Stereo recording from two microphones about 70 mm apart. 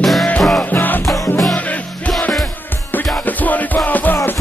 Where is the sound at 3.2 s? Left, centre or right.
Left.